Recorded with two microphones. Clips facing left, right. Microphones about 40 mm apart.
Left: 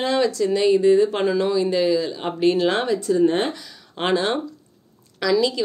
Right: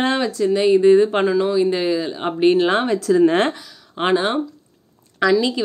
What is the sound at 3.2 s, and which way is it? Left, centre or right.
Speech, right.